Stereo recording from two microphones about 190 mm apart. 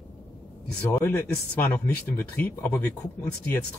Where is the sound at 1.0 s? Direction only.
10° left (ahead or behind).